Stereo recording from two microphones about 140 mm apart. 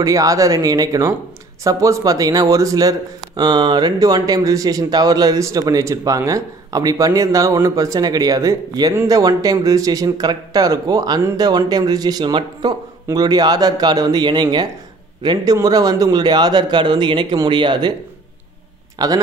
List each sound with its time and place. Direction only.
0.0 s a man's voice: 25° right (ahead or behind)
18.9 s a man's voice: 25° right (ahead or behind)